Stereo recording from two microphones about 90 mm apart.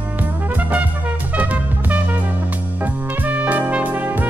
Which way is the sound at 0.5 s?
15° right (ahead or behind).